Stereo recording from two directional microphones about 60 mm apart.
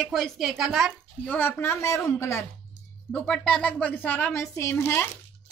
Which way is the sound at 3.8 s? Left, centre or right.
Left.